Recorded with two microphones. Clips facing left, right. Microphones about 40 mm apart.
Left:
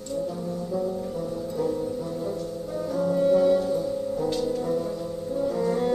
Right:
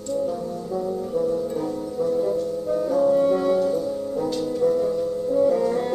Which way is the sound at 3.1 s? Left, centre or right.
Centre.